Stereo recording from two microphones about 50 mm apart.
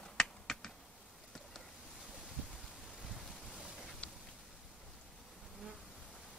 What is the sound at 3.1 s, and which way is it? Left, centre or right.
Boat, centre.